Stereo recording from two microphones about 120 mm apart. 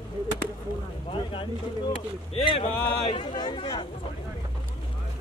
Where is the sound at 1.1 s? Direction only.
45° left (ahead or behind).